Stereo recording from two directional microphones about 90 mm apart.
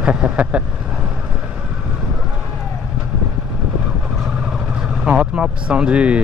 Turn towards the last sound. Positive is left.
turn(degrees=-15)  # may be behind; listen again after turning